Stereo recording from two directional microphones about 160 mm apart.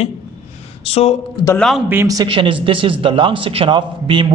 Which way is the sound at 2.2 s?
35° right (ahead or behind).